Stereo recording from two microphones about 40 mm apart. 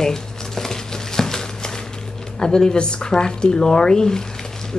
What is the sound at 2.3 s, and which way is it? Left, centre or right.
Speech, centre.